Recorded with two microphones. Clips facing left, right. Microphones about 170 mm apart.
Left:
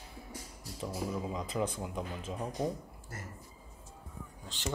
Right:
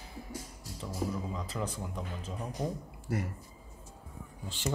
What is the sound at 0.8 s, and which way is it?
Speech, 15° left (ahead or behind).